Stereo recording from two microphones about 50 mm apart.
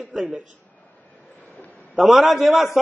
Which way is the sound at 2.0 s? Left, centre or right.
Centre.